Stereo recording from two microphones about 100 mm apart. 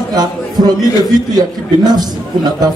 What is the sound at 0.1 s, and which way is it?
A man's voice, 40° right (ahead or behind).